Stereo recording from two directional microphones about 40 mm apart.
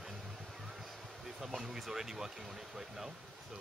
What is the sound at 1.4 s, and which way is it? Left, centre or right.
Speech, centre.